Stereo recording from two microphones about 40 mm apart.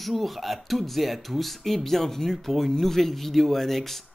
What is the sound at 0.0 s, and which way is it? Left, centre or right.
A man's voice, centre.